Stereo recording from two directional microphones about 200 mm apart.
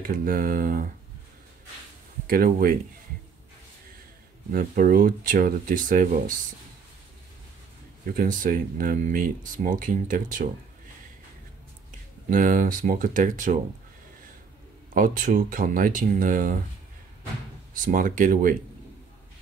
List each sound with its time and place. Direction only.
0.0 s speech: 45° right (ahead or behind)
2.2 s speech: 45° right (ahead or behind)
4.5 s speech: 45° right (ahead or behind)
8.1 s speech: 45° right (ahead or behind)
12.3 s speech: 45° right (ahead or behind)
15.0 s speech: 40° right (ahead or behind)
17.7 s speech: 40° right (ahead or behind)